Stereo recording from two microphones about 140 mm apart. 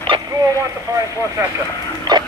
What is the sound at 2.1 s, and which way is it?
Dog, 30° right (ahead or behind).